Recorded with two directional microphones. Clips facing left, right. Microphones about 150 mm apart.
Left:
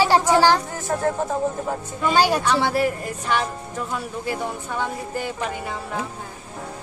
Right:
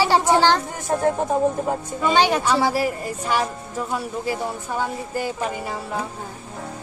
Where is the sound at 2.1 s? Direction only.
10° left (ahead or behind).